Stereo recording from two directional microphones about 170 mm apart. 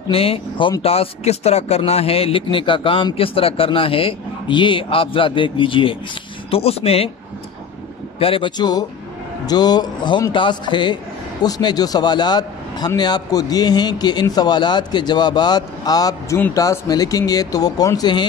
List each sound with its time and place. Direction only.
0.1 s speech: 35° left (ahead or behind)
8.2 s a man's voice: 30° left (ahead or behind)